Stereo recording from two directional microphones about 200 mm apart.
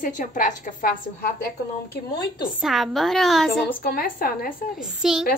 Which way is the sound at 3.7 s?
45° left (ahead or behind).